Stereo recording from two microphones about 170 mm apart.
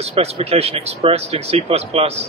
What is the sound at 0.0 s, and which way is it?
Speech, 40° right (ahead or behind).